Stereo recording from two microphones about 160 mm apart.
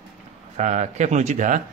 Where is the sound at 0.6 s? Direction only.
50° right (ahead or behind).